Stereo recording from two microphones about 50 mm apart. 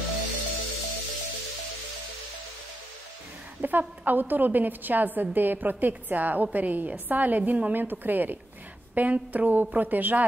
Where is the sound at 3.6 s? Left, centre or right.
Right.